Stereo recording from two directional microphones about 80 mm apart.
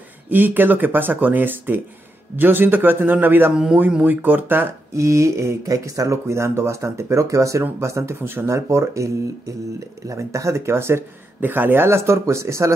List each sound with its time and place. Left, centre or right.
0.3 s speech: right
4.9 s speech: right